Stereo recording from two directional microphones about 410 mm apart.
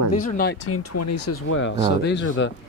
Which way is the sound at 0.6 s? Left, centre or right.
Left.